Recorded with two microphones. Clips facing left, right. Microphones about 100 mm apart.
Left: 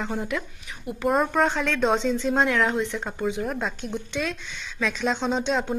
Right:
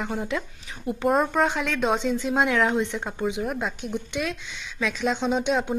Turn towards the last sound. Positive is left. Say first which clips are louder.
# right 1 dB
turn(degrees=-10)  # may be behind; listen again after turning